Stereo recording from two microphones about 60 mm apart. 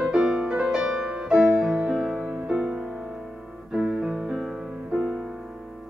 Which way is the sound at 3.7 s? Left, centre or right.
Centre.